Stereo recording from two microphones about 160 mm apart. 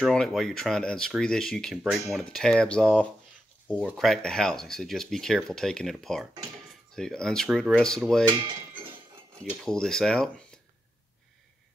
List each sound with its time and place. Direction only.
0.0 s speech: 5° left (ahead or behind)
7.4 s speech: 5° right (ahead or behind)
7.7 s speech: 5° left (ahead or behind)
8.3 s speech: 30° right (ahead or behind)
9.4 s speech: 5° left (ahead or behind)